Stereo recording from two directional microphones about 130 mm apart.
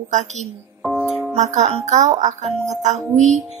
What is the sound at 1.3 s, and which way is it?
Speech, 60° right (ahead or behind).